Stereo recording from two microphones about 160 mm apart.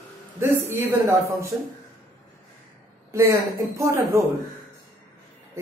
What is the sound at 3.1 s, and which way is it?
A man's voice, 20° right (ahead or behind).